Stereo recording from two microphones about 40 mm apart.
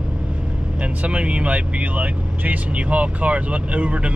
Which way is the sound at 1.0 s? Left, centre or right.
Right.